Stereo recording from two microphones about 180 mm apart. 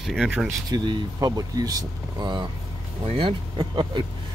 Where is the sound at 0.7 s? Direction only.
25° right (ahead or behind).